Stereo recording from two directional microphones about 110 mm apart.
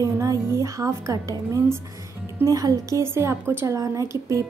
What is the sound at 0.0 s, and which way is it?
A woman's voice, 30° right (ahead or behind).